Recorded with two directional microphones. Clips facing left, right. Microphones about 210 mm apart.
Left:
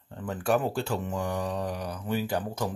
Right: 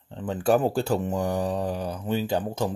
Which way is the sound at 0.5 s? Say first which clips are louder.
Right 5 dB; 35° right (ahead or behind).